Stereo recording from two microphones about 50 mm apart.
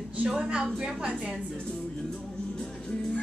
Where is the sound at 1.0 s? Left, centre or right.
Right.